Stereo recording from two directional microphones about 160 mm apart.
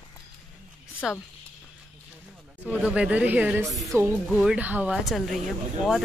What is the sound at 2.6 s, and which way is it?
Speech, 10° right (ahead or behind).